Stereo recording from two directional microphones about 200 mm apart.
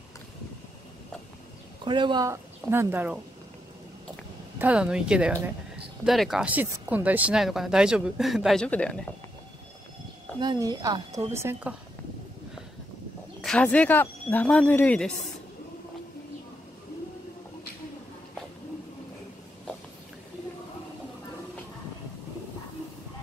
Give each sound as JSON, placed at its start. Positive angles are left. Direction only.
{"t": 1.9, "sound": "a woman's voice", "side_deg": -25}
{"t": 4.6, "sound": "speech", "side_deg": -5}
{"t": 10.4, "sound": "a woman's voice", "side_deg": -20}
{"t": 13.4, "sound": "speech", "side_deg": 5}